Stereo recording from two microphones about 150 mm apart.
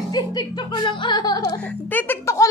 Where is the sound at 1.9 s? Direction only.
15° left (ahead or behind).